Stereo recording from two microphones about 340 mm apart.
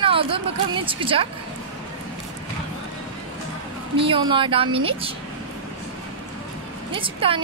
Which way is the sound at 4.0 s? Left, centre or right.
Centre.